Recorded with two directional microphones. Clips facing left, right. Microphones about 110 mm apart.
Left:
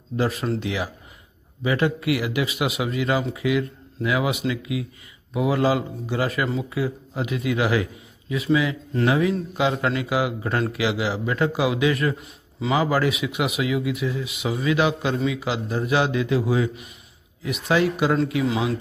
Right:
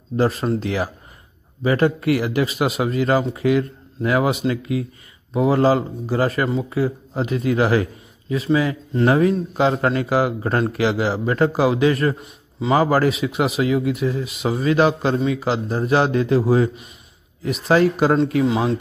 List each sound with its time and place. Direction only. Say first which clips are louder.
0.2 s a man's voice: right 4 dB; 40° right (ahead or behind)
12.7 s speech: right 4 dB; 40° right (ahead or behind)